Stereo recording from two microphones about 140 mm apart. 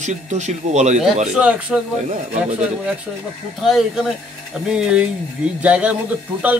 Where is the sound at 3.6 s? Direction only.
Centre (ahead or behind).